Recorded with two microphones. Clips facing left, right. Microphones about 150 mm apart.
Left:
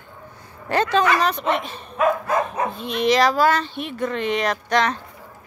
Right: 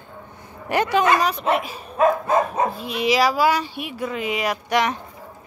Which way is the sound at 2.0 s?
25° right (ahead or behind).